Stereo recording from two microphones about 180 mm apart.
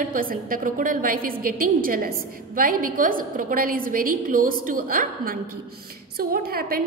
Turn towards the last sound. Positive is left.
turn(degrees=-55)  # may be behind; listen again after turning